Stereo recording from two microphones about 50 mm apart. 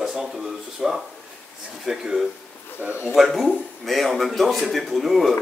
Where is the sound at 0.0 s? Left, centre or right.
Centre.